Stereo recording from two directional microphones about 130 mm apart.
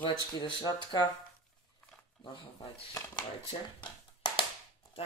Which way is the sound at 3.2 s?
35° left (ahead or behind).